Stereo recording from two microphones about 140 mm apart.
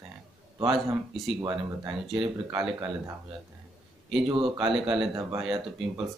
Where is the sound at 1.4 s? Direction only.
40° right (ahead or behind).